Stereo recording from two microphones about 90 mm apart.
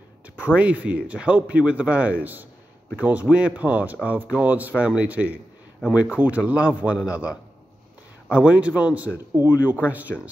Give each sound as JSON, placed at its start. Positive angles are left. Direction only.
{"t": 0.4, "sound": "speech", "side_deg": -15}